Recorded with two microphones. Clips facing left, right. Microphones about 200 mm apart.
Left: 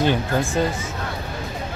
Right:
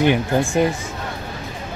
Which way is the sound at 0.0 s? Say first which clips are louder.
Right 3 dB; 15° right (ahead or behind).